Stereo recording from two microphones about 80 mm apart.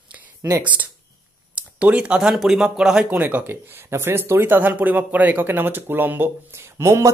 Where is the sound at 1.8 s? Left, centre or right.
Centre.